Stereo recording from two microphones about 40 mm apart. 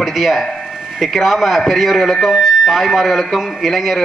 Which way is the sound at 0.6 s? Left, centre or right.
Centre.